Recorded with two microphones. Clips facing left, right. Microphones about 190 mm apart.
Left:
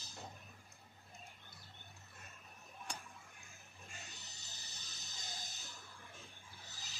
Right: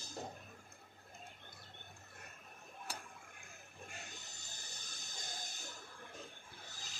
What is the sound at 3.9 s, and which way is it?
Music, 50° right (ahead or behind).